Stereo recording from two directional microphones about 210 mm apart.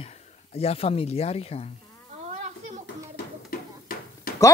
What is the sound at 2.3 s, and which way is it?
Children playing, 35° right (ahead or behind).